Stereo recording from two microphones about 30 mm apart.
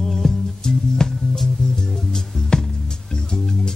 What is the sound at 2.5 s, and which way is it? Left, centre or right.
Music, left.